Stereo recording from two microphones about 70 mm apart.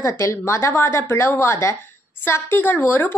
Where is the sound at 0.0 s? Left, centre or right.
Left.